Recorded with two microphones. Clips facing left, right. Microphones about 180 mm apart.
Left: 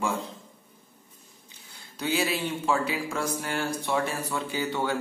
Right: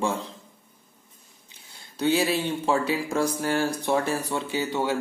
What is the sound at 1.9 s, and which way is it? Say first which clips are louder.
Speech: right 5 dB; 35° right (ahead or behind).